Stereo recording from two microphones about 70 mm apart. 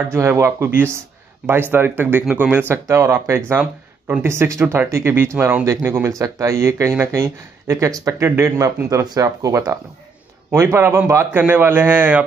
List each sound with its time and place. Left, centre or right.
0.1 s speech: right
2.9 s speech: right
8.3 s speech: right
9.0 s speech: right